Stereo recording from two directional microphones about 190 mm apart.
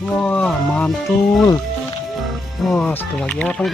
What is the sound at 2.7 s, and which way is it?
Speech, 5° left (ahead or behind).